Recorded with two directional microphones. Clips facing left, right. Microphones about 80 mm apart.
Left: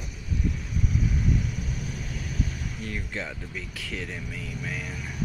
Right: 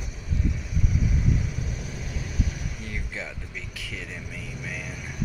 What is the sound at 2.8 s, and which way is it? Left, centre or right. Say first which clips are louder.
Vehicle: left 2 dB; centre.